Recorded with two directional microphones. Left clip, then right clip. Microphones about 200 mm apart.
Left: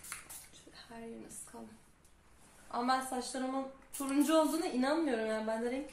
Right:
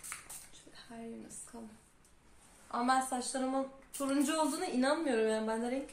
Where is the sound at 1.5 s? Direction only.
Centre (ahead or behind).